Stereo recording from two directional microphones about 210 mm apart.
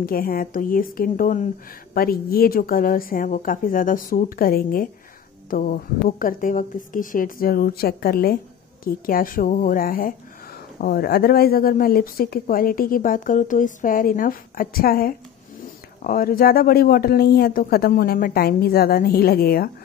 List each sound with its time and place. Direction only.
0.0 s a woman's voice: 45° left (ahead or behind)